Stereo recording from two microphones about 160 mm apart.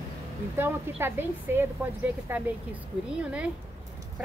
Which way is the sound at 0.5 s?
15° right (ahead or behind).